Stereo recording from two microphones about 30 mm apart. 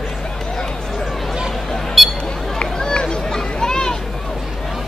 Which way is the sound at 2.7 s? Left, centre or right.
Left.